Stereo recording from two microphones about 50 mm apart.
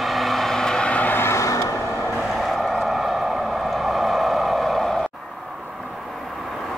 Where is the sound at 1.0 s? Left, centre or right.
Left.